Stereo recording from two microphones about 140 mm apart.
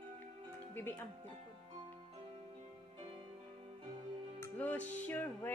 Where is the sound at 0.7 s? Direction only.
15° left (ahead or behind).